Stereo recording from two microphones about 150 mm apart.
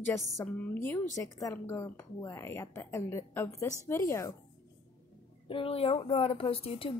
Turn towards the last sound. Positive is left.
turn(degrees=40)  # may be behind; listen again after turning